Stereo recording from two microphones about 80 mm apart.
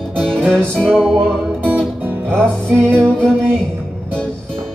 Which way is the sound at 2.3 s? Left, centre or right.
Centre.